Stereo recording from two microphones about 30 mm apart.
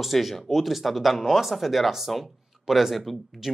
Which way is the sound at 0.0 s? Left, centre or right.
Centre.